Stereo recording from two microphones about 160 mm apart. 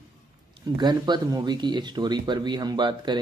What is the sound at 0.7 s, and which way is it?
Speech, 25° right (ahead or behind).